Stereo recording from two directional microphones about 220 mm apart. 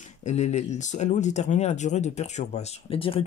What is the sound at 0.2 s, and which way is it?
Speech, 30° left (ahead or behind).